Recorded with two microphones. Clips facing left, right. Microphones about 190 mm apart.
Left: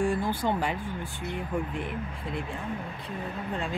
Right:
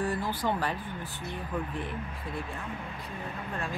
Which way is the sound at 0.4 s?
20° left (ahead or behind).